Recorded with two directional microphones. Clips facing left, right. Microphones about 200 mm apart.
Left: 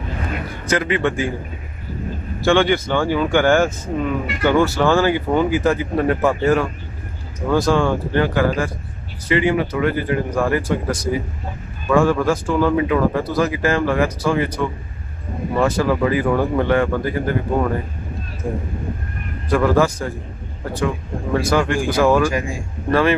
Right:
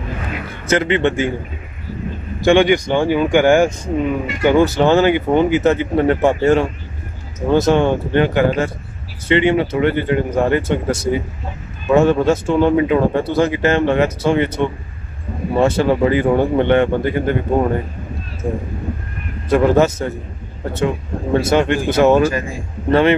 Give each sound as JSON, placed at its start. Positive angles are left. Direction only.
{"t": 0.7, "sound": "a man's voice", "side_deg": -25}
{"t": 2.4, "sound": "a man's voice", "side_deg": -15}
{"t": 19.5, "sound": "a man's voice", "side_deg": -25}